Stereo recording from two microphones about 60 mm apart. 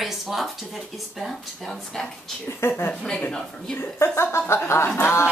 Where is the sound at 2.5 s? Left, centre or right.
Left.